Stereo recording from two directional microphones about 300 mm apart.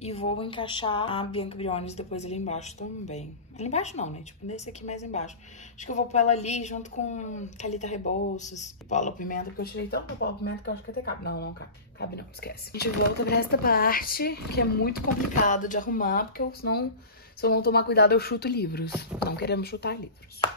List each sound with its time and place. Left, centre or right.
0.0 s speech: centre